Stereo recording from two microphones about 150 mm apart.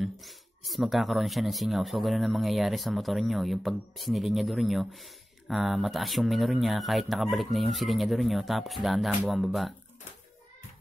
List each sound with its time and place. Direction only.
0.0 s speech: centre (ahead or behind)